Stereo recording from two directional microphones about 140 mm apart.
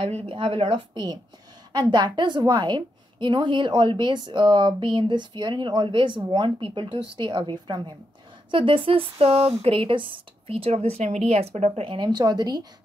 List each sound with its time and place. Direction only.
0.0 s a woman's voice: 40° right (ahead or behind)